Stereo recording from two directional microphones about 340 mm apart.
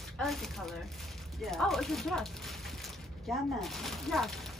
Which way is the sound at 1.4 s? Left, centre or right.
Centre.